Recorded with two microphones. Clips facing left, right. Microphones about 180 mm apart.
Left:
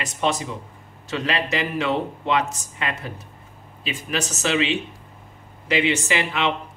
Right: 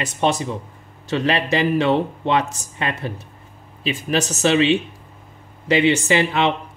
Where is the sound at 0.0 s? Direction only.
30° right (ahead or behind).